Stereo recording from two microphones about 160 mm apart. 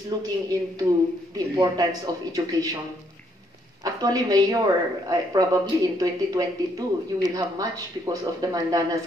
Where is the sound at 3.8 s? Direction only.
25° right (ahead or behind).